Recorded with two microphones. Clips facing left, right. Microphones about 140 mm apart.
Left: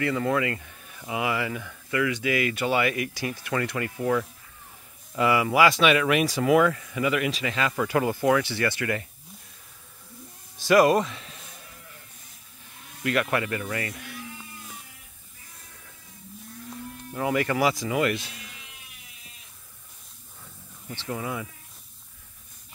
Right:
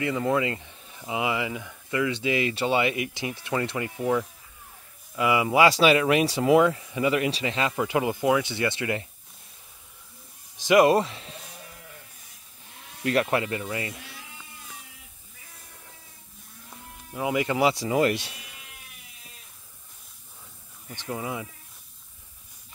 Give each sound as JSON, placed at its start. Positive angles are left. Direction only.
{"t": 0.0, "sound": "speech", "side_deg": -20}
{"t": 5.3, "sound": "speech", "side_deg": -20}
{"t": 10.6, "sound": "speech", "side_deg": -20}
{"t": 13.0, "sound": "speech", "side_deg": -30}
{"t": 17.1, "sound": "speech", "side_deg": -10}
{"t": 20.9, "sound": "speech", "side_deg": -15}